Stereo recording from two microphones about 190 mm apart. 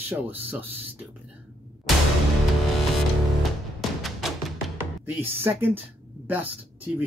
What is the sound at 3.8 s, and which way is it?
Music, centre (ahead or behind).